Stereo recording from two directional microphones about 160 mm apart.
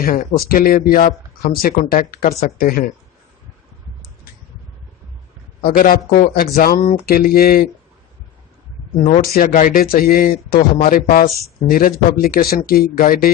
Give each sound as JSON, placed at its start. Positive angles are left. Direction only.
{"t": 0.0, "sound": "speech", "side_deg": 60}
{"t": 5.6, "sound": "speech", "side_deg": 65}
{"t": 8.9, "sound": "speech", "side_deg": 50}
{"t": 9.2, "sound": "speech", "side_deg": 65}